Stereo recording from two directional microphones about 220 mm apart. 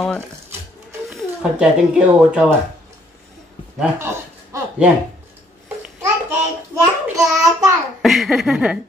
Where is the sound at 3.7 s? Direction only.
10° right (ahead or behind).